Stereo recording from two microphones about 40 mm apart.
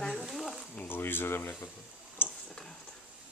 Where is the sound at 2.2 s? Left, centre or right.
Left.